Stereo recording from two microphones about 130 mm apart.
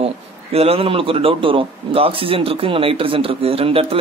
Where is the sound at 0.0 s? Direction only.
50° right (ahead or behind).